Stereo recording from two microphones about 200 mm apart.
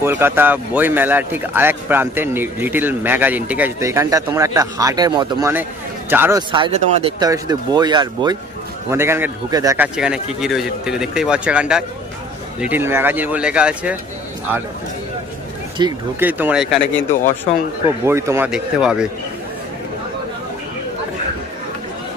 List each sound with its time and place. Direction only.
0.0 s speech: 10° right (ahead or behind)
5.5 s a man's voice: 10° right (ahead or behind)
6.5 s speech: 30° right (ahead or behind)
9.9 s speech: 5° right (ahead or behind)
15.8 s speech: 20° right (ahead or behind)
16.2 s speech: 10° right (ahead or behind)
18.0 s speech: 15° right (ahead or behind)